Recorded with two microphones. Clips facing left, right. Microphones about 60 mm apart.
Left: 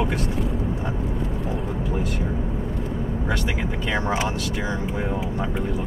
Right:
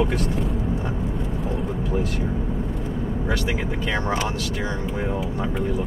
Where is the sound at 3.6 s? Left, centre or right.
Centre.